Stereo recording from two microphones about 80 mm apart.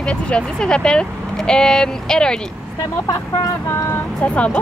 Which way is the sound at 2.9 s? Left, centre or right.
Left.